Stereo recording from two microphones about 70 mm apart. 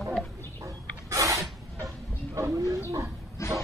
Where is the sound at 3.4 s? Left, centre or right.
Left.